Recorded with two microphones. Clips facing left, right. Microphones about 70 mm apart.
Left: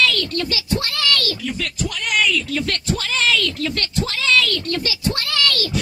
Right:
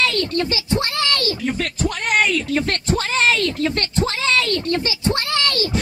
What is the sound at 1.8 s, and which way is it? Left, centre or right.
Speech, right.